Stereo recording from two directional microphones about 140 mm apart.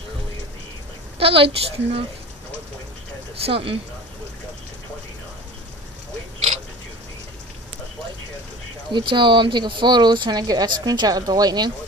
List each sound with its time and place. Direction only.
1.2 s speech: 40° right (ahead or behind)
3.4 s speech: 45° right (ahead or behind)
8.9 s speech: 35° right (ahead or behind)